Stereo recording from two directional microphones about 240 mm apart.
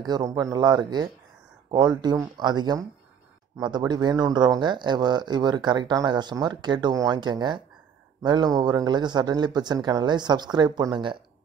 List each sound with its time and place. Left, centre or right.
0.0 s speech: centre